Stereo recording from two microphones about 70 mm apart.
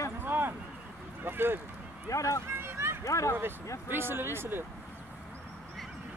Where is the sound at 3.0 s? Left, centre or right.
Left.